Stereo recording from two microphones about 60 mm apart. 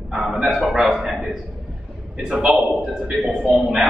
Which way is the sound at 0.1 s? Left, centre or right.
Centre.